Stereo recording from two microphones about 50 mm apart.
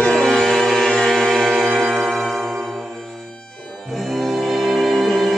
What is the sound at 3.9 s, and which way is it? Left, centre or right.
Music, centre.